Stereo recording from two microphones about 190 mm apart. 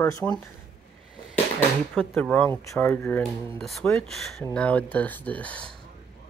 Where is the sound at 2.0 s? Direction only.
10° left (ahead or behind).